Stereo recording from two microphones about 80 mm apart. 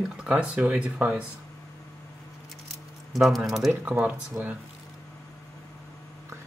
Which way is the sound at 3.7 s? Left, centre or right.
Centre.